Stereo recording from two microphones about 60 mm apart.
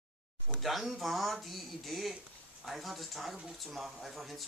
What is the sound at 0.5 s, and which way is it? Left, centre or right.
Speech, centre.